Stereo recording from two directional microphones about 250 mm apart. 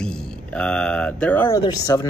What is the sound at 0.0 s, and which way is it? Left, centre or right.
Speech, centre.